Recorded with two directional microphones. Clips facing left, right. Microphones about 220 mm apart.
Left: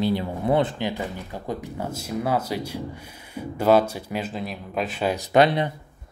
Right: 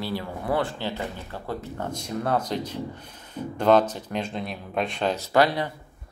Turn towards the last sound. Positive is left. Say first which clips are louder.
# left 3 dB
turn(degrees=20)  # may be behind; listen again after turning